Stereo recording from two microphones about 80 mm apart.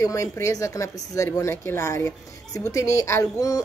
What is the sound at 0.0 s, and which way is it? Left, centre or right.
Speech, left.